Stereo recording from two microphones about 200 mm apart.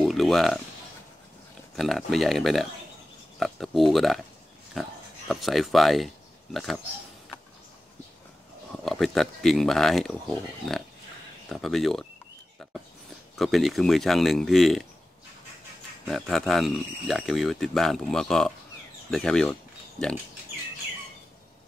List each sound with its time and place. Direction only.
0.0 s a sound: centre (ahead or behind)
1.8 s speech: centre (ahead or behind)
8.8 s speech: centre (ahead or behind)
13.4 s speech: centre (ahead or behind)
16.1 s speech: centre (ahead or behind)